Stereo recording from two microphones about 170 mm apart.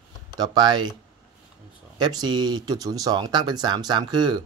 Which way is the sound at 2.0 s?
25° right (ahead or behind).